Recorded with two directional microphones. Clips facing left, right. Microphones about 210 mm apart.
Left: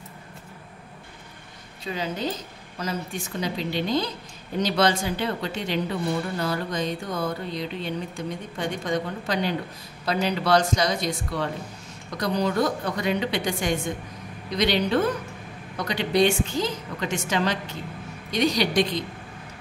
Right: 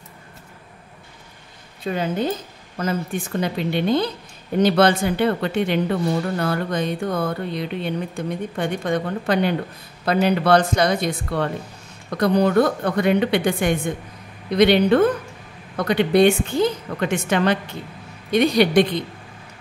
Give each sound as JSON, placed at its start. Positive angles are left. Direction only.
{"t": 1.9, "sound": "a woman's voice", "side_deg": -55}